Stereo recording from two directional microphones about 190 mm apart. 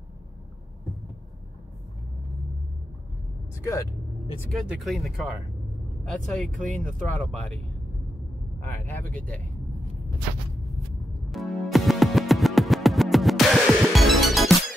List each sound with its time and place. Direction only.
4.5 s speech: centre (ahead or behind)
6.5 s speech: 40° right (ahead or behind)
6.8 s speech: 5° left (ahead or behind)
8.8 s speech: 5° left (ahead or behind)
11.3 s music: centre (ahead or behind)